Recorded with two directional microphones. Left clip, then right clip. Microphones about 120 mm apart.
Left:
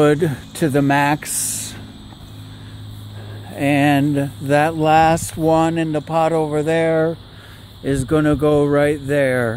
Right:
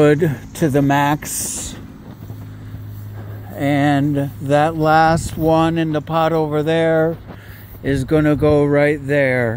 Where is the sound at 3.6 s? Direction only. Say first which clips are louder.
Left 1 dB; 25° left (ahead or behind).